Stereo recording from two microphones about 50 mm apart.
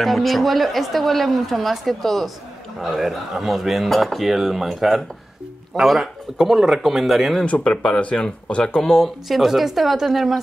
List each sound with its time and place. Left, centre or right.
0.0 s a woman's voice: centre
7.4 s a woman's voice: left; by 10.4 s centre